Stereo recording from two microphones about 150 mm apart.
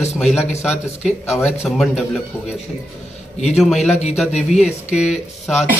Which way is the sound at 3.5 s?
Centre (ahead or behind).